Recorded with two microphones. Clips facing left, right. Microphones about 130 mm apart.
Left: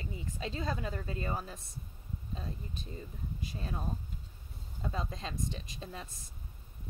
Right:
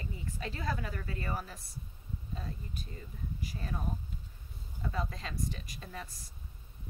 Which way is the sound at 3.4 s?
20° left (ahead or behind).